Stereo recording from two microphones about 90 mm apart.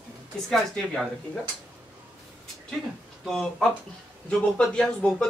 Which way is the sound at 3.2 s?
Centre (ahead or behind).